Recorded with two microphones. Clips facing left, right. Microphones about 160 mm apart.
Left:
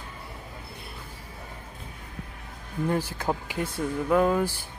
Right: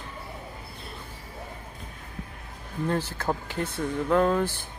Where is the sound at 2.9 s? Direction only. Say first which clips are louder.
Even; 10° left (ahead or behind).